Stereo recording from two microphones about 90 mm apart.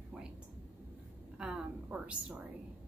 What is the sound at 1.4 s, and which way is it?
Speech, 15° right (ahead or behind).